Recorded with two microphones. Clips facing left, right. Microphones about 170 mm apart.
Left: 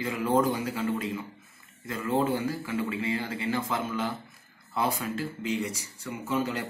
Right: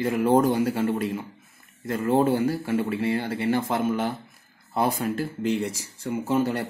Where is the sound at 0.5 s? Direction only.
60° right (ahead or behind).